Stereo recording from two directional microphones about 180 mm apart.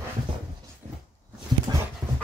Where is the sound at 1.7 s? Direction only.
25° right (ahead or behind).